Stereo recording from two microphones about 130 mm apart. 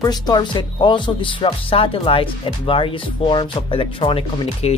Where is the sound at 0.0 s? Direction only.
35° left (ahead or behind).